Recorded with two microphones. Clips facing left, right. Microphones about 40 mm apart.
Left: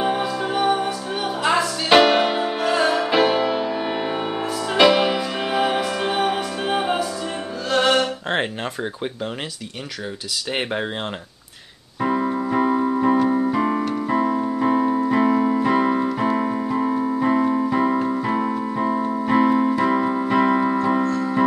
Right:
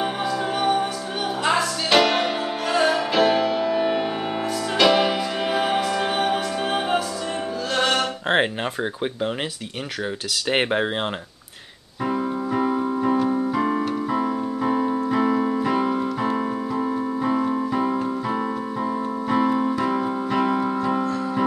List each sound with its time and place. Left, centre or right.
0.0 s music: centre
1.9 s music: centre
10.5 s speech: centre
12.2 s keyboard: centre
19.0 s music: centre
21.0 s keyboard: centre